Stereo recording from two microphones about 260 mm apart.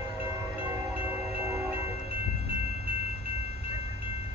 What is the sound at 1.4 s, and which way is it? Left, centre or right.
Train, centre.